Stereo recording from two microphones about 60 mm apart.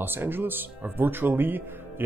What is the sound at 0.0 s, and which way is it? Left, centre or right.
Speech, right.